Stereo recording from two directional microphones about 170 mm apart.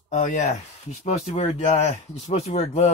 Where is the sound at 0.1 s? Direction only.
45° left (ahead or behind).